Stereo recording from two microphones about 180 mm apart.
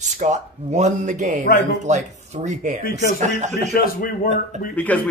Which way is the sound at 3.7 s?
55° left (ahead or behind).